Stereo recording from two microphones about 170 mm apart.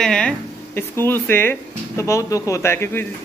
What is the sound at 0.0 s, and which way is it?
Speech, 5° left (ahead or behind).